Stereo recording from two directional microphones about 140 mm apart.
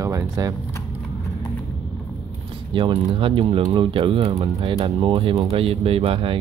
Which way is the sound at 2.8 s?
35° right (ahead or behind).